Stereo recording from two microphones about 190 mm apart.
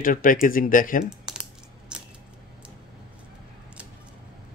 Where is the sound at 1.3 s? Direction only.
5° right (ahead or behind).